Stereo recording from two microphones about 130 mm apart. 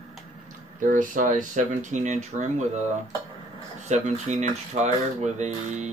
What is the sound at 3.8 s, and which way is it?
Speech, 65° right (ahead or behind).